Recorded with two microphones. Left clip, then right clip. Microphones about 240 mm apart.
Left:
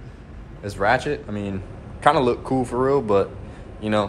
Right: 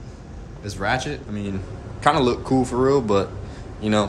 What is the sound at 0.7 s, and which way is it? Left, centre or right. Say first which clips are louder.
A man's voice: left 4 dB; centre.